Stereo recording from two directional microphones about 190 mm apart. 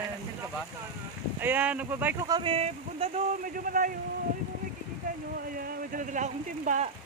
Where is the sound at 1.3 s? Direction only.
10° right (ahead or behind).